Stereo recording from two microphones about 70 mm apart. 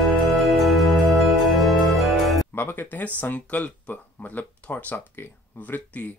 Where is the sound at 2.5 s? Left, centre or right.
Left.